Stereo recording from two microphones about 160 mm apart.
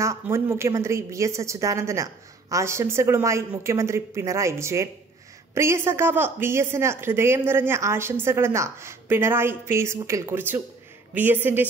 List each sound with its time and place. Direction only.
0.0 s speech: 15° right (ahead or behind)